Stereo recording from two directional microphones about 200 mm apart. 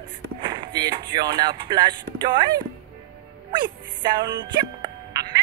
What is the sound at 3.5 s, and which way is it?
Music, 20° right (ahead or behind).